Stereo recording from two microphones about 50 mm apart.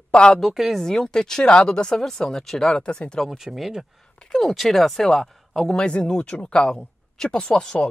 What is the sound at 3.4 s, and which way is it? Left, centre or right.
Speech, centre.